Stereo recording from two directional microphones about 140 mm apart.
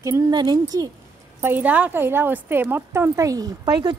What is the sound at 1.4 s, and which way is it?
A woman's voice, 15° right (ahead or behind).